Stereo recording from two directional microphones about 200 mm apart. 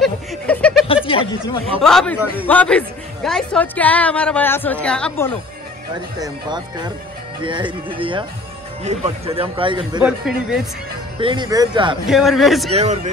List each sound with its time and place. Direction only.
0.0 s chuckle: 5° left (ahead or behind)
1.0 s speech: 25° left (ahead or behind)
1.8 s a woman's voice: centre (ahead or behind)
6.1 s speech: 20° right (ahead or behind)
10.0 s speech: 5° right (ahead or behind)
11.1 s speech: 25° right (ahead or behind)
12.1 s speech: centre (ahead or behind)
12.7 s speech: 35° right (ahead or behind)